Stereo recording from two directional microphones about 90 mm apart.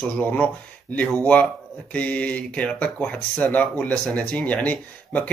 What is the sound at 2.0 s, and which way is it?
Speech, 15° left (ahead or behind).